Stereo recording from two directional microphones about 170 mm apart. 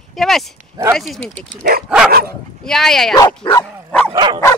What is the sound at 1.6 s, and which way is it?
Speech, 60° right (ahead or behind).